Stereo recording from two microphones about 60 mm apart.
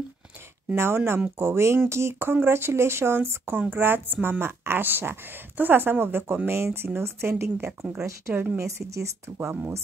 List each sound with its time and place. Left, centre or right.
0.7 s a woman's voice: right
8.5 s speech: right